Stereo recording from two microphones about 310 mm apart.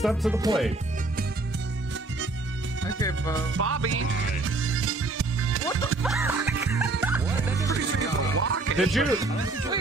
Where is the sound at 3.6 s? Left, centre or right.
Right.